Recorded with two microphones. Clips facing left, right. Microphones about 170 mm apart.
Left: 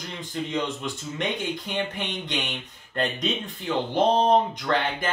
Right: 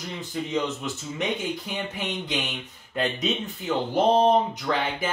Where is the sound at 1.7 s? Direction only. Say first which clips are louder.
Left 1 dB; 5° right (ahead or behind).